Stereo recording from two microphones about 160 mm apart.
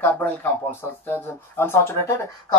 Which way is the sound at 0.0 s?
15° left (ahead or behind).